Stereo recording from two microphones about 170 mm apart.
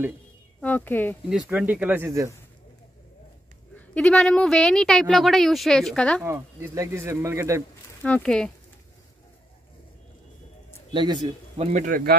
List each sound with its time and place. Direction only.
0.6 s speech: 10° left (ahead or behind)
1.5 s speech: 10° right (ahead or behind)
3.9 s speech: 5° left (ahead or behind)
6.2 s speech: 15° right (ahead or behind)
8.0 s speech: 5° left (ahead or behind)
10.9 s a man's voice: 25° right (ahead or behind)
11.6 s a man's voice: 45° right (ahead or behind)